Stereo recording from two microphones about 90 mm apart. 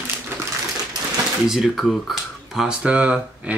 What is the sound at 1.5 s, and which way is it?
Speech, 5° right (ahead or behind).